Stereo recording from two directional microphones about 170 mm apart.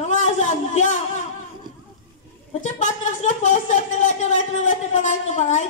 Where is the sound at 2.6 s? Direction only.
45° left (ahead or behind).